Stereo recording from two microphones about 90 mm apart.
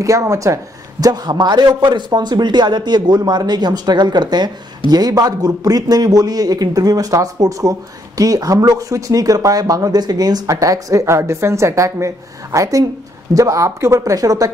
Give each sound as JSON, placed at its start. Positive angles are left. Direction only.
{"t": 0.0, "sound": "speech", "side_deg": -35}
{"t": 1.0, "sound": "a man's voice", "side_deg": -45}